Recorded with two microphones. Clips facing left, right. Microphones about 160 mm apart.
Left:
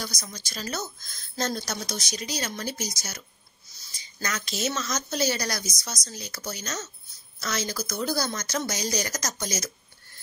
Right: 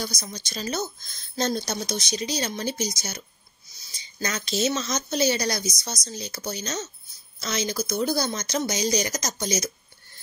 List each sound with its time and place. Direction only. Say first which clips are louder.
0.0 s speech: right 4 dB; 20° right (ahead or behind)